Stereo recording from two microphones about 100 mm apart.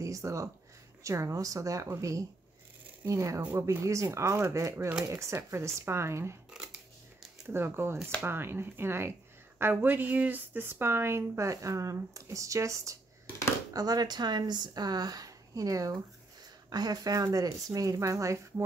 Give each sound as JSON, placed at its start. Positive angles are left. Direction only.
{"t": 0.0, "sound": "a woman's voice", "side_deg": -30}
{"t": 7.4, "sound": "a woman's voice", "side_deg": -20}